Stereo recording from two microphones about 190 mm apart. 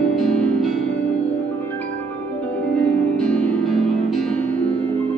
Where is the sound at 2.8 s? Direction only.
5° left (ahead or behind).